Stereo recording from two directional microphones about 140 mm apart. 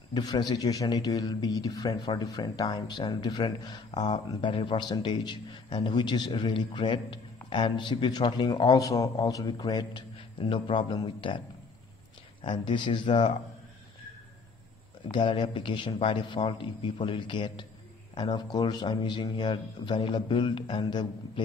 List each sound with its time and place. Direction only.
0.1 s a man's voice: 30° left (ahead or behind)
15.0 s a man's voice: 35° left (ahead or behind)